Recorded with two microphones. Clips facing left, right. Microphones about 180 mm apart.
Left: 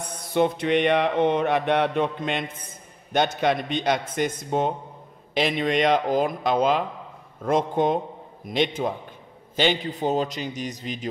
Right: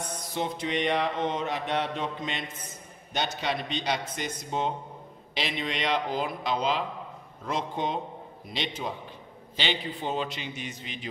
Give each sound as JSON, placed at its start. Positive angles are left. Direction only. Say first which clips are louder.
{"t": 0.3, "sound": "mantra", "louder": "left 10 dB", "side_deg": 60}
{"t": 3.1, "sound": "a man's voice", "louder": "left 8 dB", "side_deg": 55}